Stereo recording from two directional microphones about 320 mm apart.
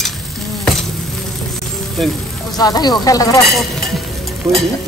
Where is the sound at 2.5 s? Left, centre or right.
Centre.